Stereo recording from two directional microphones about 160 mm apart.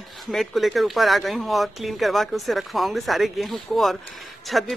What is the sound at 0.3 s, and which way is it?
Speech, centre (ahead or behind).